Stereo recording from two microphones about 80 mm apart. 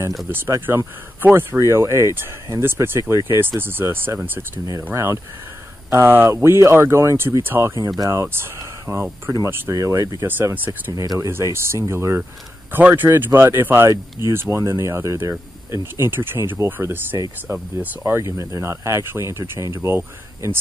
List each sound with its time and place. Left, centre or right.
0.3 s speech: right
10.2 s speech: right
10.9 s speech: right
12.7 s speech: right